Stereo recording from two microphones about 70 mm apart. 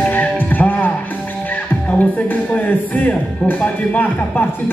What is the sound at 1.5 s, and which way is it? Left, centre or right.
Speech, left.